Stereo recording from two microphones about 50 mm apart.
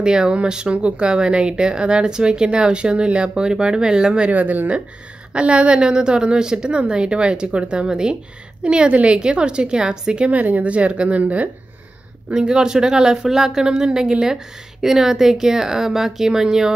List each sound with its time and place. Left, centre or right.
0.0 s speech: centre
4.3 s speech: right
5.3 s a woman's voice: right
12.3 s speech: centre